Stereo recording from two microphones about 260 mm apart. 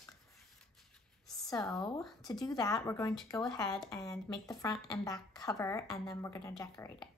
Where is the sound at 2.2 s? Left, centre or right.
Centre.